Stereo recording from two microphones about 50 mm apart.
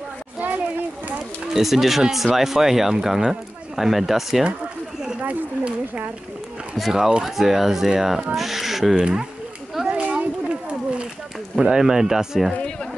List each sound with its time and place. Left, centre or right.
0.4 s a sound: right
1.5 s speech: centre
6.7 s speech: centre
8.9 s speech: centre
9.8 s a sound: right
11.6 s speech: centre